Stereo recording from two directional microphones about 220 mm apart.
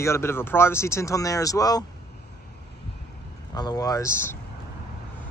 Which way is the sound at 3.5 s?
20° left (ahead or behind).